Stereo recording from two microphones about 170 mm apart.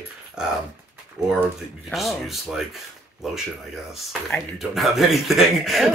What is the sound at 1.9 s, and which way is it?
Speech, centre (ahead or behind).